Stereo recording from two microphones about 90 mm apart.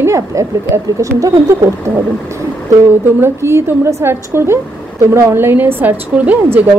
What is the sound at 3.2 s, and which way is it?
A woman's voice, 30° right (ahead or behind).